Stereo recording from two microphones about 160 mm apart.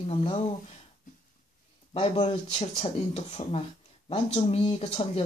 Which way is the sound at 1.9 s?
40° left (ahead or behind).